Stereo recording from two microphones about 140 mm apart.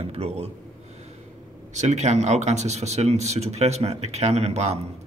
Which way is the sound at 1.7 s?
55° right (ahead or behind).